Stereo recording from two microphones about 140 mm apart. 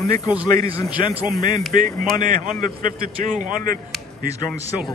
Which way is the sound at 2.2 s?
75° right (ahead or behind).